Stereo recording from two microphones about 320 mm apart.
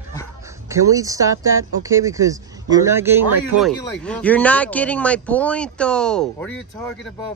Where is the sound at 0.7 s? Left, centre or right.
Centre.